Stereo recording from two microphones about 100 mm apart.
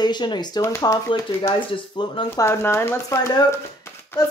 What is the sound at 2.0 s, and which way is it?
Speech, 50° left (ahead or behind).